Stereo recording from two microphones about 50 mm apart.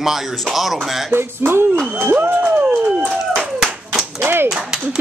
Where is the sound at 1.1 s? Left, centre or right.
Right.